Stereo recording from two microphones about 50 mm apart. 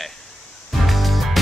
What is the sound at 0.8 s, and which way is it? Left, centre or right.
Music, centre.